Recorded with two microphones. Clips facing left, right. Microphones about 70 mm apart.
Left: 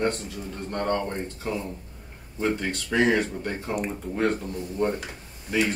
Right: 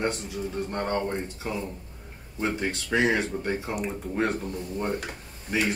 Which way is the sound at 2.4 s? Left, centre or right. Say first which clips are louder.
Left 2 dB; right.